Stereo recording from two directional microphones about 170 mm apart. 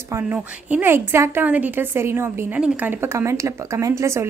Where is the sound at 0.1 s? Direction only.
10° right (ahead or behind).